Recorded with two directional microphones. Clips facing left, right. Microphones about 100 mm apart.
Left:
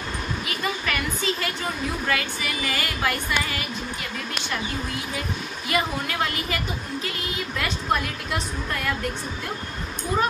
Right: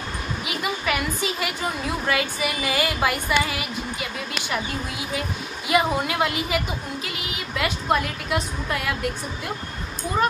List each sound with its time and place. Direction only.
0.5 s speech: 15° right (ahead or behind)
5.7 s speech: 15° right (ahead or behind)